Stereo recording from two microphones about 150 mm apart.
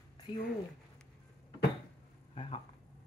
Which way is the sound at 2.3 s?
40° left (ahead or behind).